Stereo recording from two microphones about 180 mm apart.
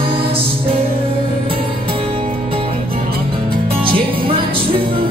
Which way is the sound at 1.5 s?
30° right (ahead or behind).